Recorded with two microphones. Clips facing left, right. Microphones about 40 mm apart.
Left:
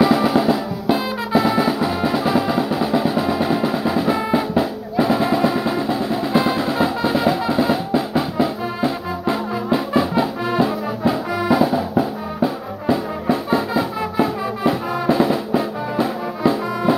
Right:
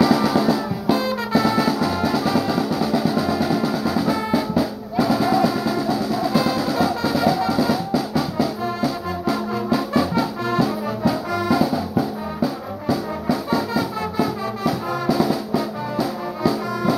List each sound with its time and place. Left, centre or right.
0.0 s drum: left